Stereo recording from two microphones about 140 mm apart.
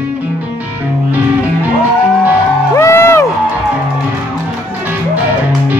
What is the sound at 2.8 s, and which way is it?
Music, 20° left (ahead or behind).